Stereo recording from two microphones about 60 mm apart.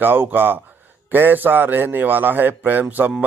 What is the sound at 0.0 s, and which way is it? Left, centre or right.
A man's voice, right.